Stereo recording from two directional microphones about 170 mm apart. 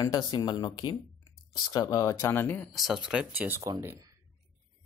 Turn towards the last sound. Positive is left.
turn(degrees=-15)  # may be behind; listen again after turning